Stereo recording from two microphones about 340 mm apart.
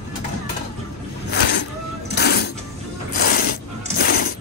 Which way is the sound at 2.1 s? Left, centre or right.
Left.